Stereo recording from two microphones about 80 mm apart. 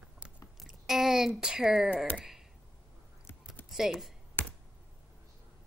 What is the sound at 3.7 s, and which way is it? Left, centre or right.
Speech, centre.